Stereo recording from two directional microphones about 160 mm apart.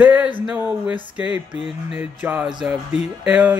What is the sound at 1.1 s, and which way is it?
Speech, 5° right (ahead or behind).